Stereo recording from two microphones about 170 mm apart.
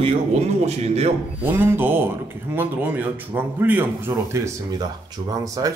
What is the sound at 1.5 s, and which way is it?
Speech, 10° right (ahead or behind).